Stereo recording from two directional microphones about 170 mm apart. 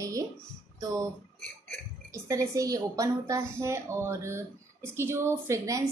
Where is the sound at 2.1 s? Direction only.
20° right (ahead or behind).